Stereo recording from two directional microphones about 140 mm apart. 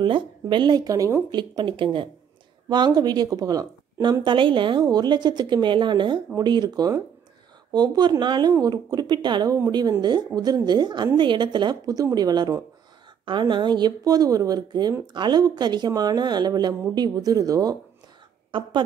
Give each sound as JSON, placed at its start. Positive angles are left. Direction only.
{"t": 0.0, "sound": "a woman's voice", "side_deg": -35}